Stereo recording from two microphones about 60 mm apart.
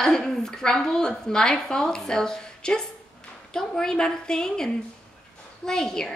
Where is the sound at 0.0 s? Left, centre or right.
Centre.